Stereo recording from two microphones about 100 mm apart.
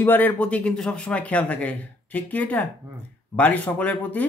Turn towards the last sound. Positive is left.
turn(degrees=15)  # may be behind; listen again after turning